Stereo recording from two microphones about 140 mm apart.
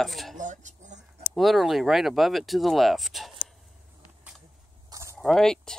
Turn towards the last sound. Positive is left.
turn(degrees=5)  # may be behind; listen again after turning